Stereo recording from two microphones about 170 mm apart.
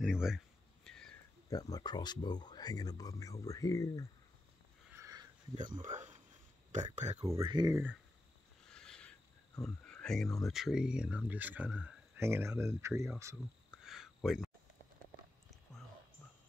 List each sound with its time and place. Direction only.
0.0 s speech: 5° right (ahead or behind)
0.8 s a sound: 5° left (ahead or behind)
1.5 s speech: 20° left (ahead or behind)
4.9 s sniff: 20° right (ahead or behind)
5.8 s speech: 45° right (ahead or behind)
7.4 s speech: 25° right (ahead or behind)
8.6 s a sound: 5° left (ahead or behind)
9.6 s speech: 5° left (ahead or behind); by 13.1 s 15° right (ahead or behind)
13.8 s a sound: centre (ahead or behind)